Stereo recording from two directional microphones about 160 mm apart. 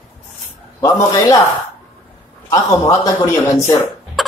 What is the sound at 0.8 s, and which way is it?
Speech, 20° left (ahead or behind).